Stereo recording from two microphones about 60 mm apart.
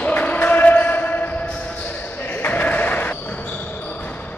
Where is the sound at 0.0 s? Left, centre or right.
Left.